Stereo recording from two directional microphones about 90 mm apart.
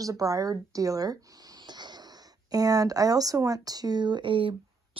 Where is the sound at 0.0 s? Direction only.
40° right (ahead or behind).